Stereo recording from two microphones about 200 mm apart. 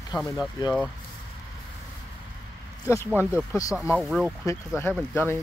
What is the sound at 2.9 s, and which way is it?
Speech, 15° left (ahead or behind).